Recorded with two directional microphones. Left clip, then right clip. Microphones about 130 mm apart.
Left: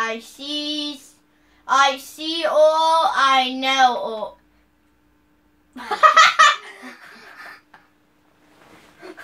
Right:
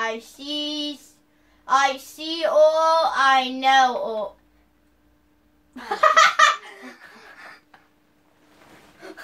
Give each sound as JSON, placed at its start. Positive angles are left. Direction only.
{"t": 0.0, "sound": "female singing", "side_deg": 20}
{"t": 1.6, "sound": "speech", "side_deg": 20}
{"t": 5.9, "sound": "laughter", "side_deg": 15}